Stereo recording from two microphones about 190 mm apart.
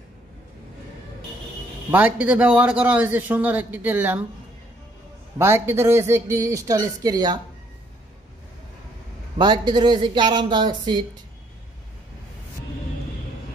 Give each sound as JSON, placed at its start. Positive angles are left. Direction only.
{"t": 1.9, "sound": "a man's voice", "side_deg": -10}
{"t": 5.4, "sound": "a man's voice", "side_deg": -15}
{"t": 9.4, "sound": "speech", "side_deg": -25}